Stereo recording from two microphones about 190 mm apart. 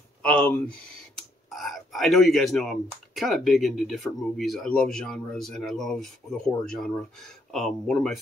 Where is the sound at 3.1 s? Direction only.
Centre (ahead or behind).